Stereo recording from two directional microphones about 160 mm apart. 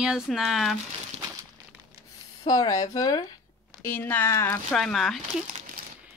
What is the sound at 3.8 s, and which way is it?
Speech, 10° left (ahead or behind).